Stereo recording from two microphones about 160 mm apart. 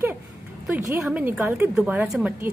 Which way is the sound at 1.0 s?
5° right (ahead or behind).